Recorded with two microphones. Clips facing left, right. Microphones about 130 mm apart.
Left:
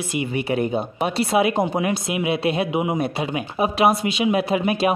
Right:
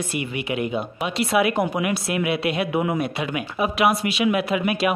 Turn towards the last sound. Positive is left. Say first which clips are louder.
# left 2 dB
turn(degrees=30)  # may be behind; listen again after turning